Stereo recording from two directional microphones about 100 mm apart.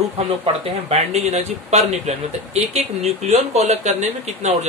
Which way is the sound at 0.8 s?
90° right.